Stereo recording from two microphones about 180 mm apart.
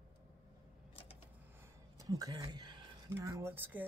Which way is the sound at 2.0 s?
20° right (ahead or behind).